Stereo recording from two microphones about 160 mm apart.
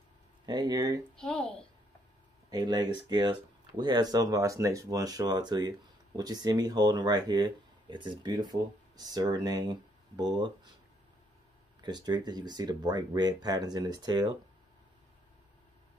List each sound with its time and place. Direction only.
0.5 s speech: 25° right (ahead or behind)
1.1 s speech: 5° left (ahead or behind)
2.5 s speech: 25° right (ahead or behind)
11.8 s speech: 25° right (ahead or behind)